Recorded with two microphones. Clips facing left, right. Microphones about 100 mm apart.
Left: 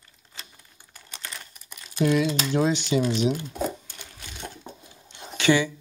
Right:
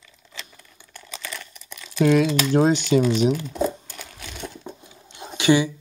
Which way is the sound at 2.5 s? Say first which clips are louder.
Right 5 dB; 40° right (ahead or behind).